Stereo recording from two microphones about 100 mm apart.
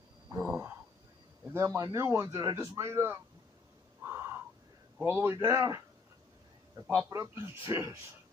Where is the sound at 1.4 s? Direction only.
25° right (ahead or behind).